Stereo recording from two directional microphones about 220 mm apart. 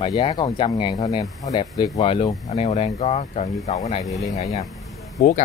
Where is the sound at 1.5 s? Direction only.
30° left (ahead or behind).